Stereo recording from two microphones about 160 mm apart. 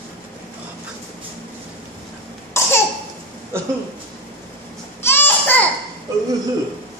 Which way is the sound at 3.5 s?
15° right (ahead or behind).